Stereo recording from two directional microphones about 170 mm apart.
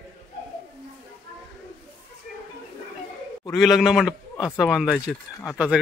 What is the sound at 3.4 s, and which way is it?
A man's voice, centre (ahead or behind).